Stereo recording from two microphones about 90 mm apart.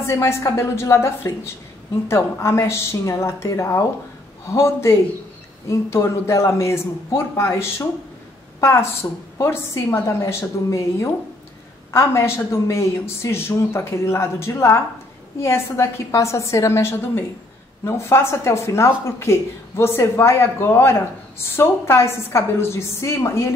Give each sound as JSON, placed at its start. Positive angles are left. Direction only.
{"t": 0.0, "sound": "speech", "side_deg": 30}
{"t": 9.4, "sound": "speech", "side_deg": 30}